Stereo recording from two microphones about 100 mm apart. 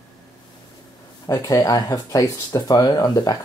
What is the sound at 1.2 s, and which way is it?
Speech, 35° left (ahead or behind).